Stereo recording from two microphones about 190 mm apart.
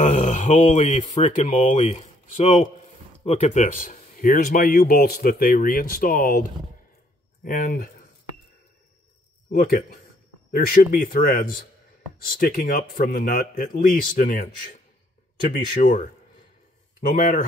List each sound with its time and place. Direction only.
0.0 s speech: 35° left (ahead or behind)
9.5 s speech: 50° left (ahead or behind)